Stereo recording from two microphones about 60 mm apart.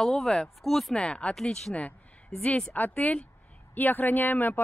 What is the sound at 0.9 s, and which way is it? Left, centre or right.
A woman's voice, centre.